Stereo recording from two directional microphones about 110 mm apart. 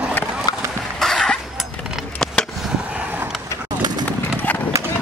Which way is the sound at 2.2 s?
5° left (ahead or behind).